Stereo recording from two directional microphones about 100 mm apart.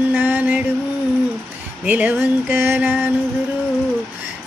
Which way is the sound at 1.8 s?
15° right (ahead or behind).